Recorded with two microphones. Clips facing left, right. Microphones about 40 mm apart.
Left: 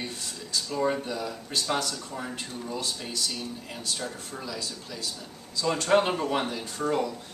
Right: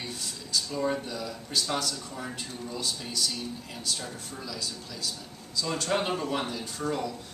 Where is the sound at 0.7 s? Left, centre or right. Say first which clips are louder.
Left 4 dB; centre.